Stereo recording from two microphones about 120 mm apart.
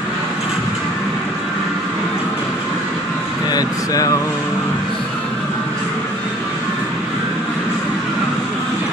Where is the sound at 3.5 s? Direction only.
30° left (ahead or behind).